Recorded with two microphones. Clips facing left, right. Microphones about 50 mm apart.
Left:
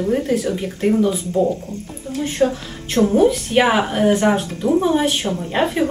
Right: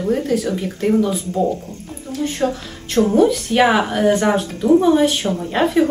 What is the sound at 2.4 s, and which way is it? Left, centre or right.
Speech, right.